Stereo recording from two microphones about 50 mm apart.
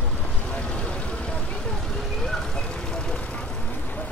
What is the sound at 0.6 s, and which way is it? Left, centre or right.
Vehicle, left.